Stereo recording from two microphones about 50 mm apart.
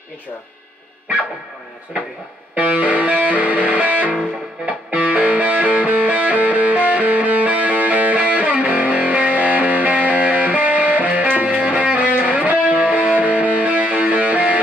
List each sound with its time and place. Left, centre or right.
2.5 s music: right